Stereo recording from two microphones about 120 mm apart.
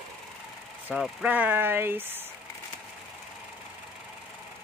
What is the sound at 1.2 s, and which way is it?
Speech, 10° right (ahead or behind).